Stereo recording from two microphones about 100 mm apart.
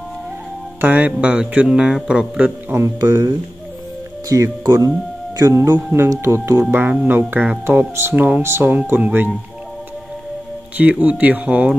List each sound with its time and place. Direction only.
0.7 s speech: 15° right (ahead or behind)
2.7 s speech: 30° right (ahead or behind)
5.8 s speech: 15° right (ahead or behind)
6.0 s speech: 30° right (ahead or behind)
10.8 s speech: 15° right (ahead or behind)